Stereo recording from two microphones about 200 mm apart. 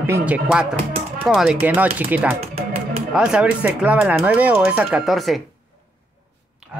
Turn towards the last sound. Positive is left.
turn(degrees=0)  # may be behind; listen again after turning